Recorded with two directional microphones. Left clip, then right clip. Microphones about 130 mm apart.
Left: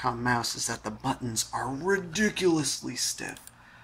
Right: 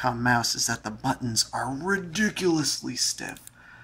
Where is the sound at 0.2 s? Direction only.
20° right (ahead or behind).